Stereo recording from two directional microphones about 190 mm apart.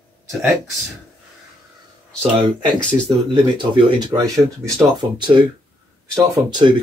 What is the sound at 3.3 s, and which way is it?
Speech, 25° right (ahead or behind).